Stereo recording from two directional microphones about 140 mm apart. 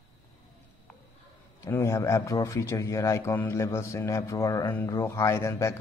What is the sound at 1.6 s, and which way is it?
Speech, 20° left (ahead or behind).